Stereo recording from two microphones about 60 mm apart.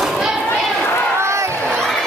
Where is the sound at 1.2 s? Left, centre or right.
Right.